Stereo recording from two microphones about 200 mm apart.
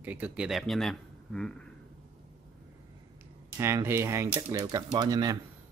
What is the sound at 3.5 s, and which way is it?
Speech, 15° right (ahead or behind).